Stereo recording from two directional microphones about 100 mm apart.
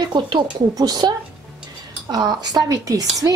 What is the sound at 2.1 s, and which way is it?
Speech, 40° right (ahead or behind).